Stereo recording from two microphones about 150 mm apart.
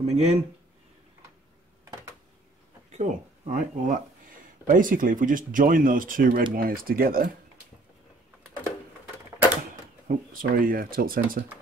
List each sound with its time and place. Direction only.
0.0 s speech: 45° right (ahead or behind)
2.9 s speech: 55° right (ahead or behind); by 7.3 s 75° right (ahead or behind)
9.6 s speech: 70° right (ahead or behind)